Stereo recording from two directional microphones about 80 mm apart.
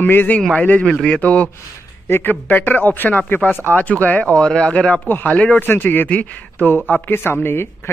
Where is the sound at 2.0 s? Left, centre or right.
Left.